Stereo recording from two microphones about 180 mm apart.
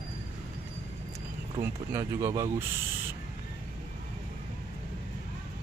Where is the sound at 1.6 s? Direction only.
15° right (ahead or behind).